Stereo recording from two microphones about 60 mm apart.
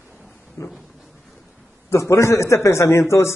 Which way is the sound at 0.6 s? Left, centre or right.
Left.